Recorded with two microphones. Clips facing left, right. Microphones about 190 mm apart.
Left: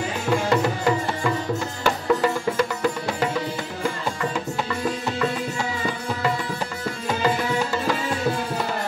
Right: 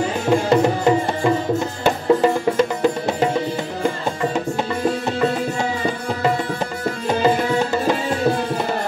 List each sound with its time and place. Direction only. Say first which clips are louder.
0.3 s music: right 5 dB; 25° right (ahead or behind)
7.2 s tabla: right 5 dB; 25° right (ahead or behind)